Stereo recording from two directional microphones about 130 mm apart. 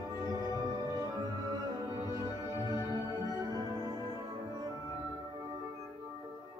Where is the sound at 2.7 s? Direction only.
30° left (ahead or behind).